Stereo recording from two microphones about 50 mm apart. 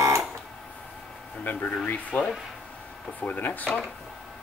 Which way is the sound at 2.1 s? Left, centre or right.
Left.